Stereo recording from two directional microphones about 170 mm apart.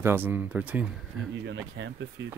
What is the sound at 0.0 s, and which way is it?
Speech, 10° right (ahead or behind).